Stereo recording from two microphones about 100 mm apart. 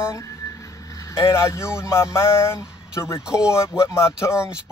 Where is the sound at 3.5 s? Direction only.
30° left (ahead or behind).